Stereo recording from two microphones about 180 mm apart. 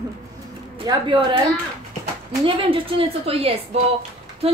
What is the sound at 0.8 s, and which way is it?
Speech, 25° right (ahead or behind).